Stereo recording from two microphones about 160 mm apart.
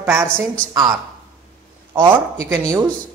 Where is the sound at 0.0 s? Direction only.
15° right (ahead or behind).